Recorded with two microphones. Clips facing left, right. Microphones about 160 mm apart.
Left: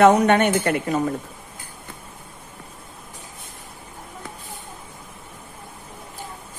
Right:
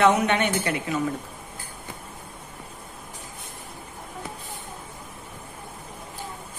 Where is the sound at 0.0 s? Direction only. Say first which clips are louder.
Left 6 dB; 50° left (ahead or behind).